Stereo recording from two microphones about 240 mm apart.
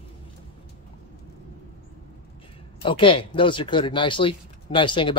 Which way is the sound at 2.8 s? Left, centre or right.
Left.